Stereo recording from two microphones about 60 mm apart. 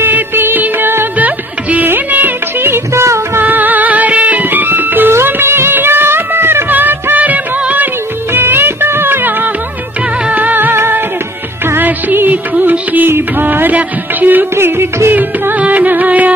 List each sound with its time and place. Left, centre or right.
0.0 s music: right
2.9 s music: right
3.3 s music: right
5.1 s music of bollywood: right
10.3 s music: right
14.5 s music: right
15.1 s music: right